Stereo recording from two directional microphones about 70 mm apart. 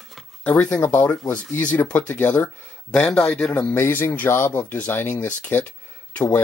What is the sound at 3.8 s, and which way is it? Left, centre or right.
Speech, left.